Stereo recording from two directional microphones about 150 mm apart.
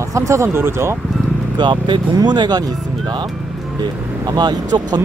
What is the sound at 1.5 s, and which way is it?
Speech, 30° right (ahead or behind).